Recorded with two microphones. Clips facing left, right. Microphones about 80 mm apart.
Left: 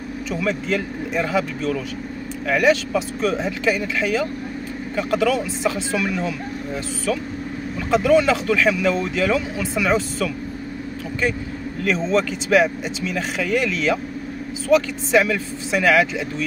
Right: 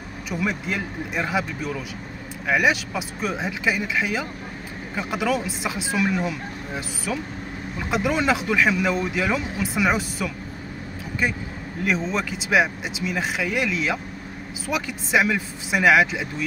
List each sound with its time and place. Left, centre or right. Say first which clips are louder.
0.3 s speech: left 4 dB; centre
12.1 s speech: left 5 dB; centre